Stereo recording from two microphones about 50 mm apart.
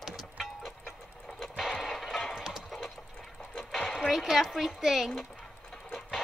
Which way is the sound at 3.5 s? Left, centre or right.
Centre.